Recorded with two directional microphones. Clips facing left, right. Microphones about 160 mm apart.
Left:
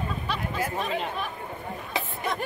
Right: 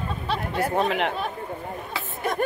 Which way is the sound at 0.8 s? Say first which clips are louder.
Right 5 dB; 70° right (ahead or behind).